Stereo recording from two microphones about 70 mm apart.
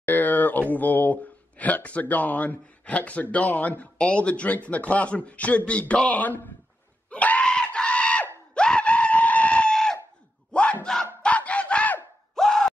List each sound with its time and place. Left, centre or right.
0.0 s a man's voice: left
7.1 s screaming: centre
10.5 s battle cry: centre
11.2 s music: centre
12.4 s a sound: centre